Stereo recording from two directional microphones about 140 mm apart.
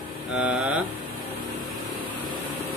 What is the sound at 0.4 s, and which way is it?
Mantra, 10° right (ahead or behind).